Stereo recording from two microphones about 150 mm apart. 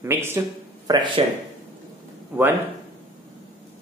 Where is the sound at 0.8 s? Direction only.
30° right (ahead or behind).